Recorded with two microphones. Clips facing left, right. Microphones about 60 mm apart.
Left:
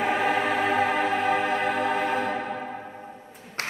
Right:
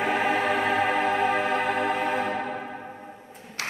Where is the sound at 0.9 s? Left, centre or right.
Centre.